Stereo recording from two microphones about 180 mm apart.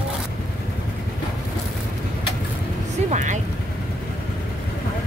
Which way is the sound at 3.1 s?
40° right (ahead or behind).